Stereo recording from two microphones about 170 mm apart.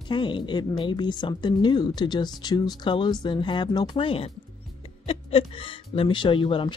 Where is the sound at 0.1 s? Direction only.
30° left (ahead or behind).